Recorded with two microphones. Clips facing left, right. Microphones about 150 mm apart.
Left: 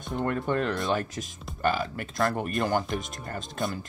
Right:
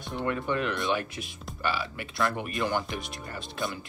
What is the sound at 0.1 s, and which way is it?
Speech, 45° left (ahead or behind).